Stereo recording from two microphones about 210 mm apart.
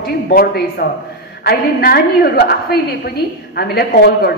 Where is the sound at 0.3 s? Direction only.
45° left (ahead or behind).